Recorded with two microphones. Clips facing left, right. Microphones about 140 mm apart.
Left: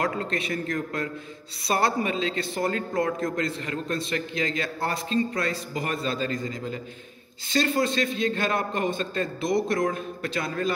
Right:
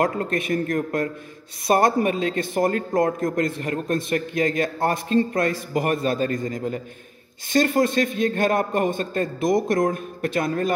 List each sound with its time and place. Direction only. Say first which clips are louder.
0.0 s speech: right 5 dB; 50° right (ahead or behind)